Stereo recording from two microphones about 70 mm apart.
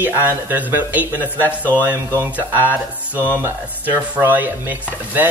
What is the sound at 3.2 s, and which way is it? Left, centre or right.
Speech, right.